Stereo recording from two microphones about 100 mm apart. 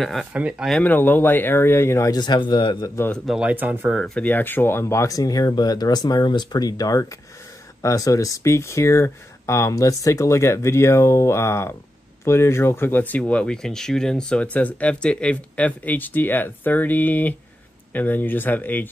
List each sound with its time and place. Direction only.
0.0 s speech: centre (ahead or behind)
0.3 s speech: 10° right (ahead or behind)
0.8 s speech: 20° left (ahead or behind)
2.1 s speech: 45° left (ahead or behind)
3.3 s speech: 10° right (ahead or behind)
4.0 s speech: 10° left (ahead or behind)
4.3 s speech: 20° left (ahead or behind)